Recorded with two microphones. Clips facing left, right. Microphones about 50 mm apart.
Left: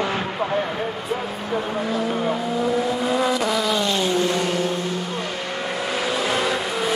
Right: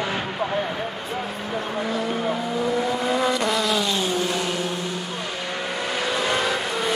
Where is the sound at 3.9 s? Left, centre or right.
Left.